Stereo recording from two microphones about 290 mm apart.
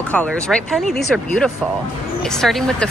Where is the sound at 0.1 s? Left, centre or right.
Centre.